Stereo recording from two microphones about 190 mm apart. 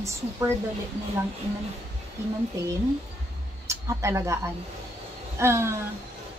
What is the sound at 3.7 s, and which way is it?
Speech, 15° right (ahead or behind).